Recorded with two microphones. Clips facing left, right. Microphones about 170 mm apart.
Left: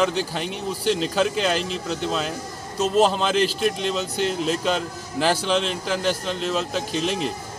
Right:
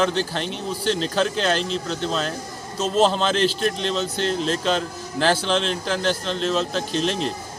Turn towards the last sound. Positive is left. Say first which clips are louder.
# right 1 dB
turn(degrees=5)  # may be behind; listen again after turning